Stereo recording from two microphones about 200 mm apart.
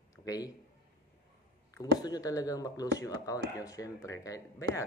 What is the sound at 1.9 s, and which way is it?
Speech, 20° left (ahead or behind).